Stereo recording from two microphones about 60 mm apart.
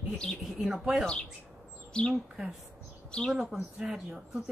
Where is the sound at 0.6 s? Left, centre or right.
Centre.